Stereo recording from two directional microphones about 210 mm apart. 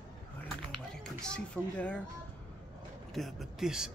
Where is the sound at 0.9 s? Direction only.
5° left (ahead or behind).